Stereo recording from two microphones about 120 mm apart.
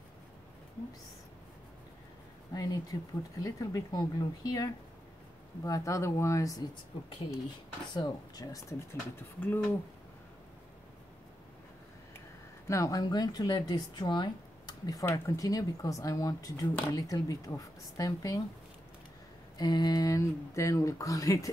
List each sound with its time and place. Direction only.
2.5 s speech: 30° left (ahead or behind)
7.8 s speech: 35° left (ahead or behind); by 9.8 s 15° left (ahead or behind)
12.6 s speech: 25° left (ahead or behind)
19.6 s speech: 35° left (ahead or behind)